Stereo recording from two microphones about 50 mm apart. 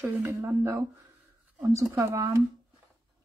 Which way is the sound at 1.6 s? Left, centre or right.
Right.